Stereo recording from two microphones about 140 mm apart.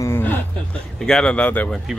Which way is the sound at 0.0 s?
15° left (ahead or behind).